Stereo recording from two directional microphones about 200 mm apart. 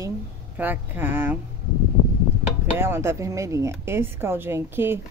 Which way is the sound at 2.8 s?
10° right (ahead or behind).